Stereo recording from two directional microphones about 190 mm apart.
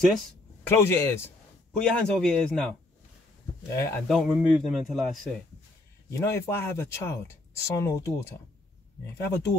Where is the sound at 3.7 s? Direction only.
15° left (ahead or behind).